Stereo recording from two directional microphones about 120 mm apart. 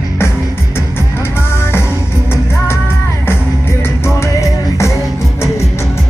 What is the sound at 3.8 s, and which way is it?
Music, 25° left (ahead or behind).